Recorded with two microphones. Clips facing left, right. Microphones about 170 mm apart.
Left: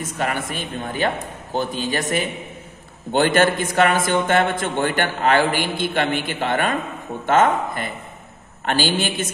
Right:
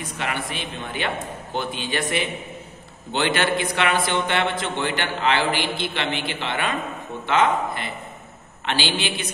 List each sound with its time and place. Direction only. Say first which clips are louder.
0.0 s a man's voice: left 4 dB; 45° left (ahead or behind)